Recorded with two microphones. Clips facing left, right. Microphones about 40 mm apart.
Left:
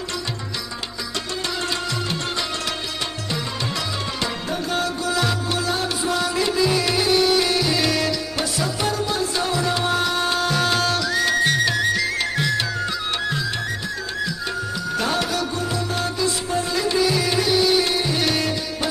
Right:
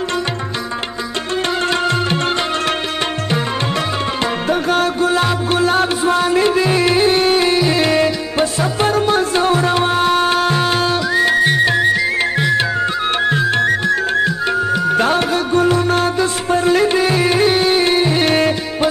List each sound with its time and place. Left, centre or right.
1.7 s music: right
4.2 s music: right